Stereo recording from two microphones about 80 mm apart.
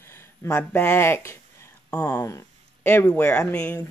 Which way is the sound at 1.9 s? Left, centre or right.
Centre.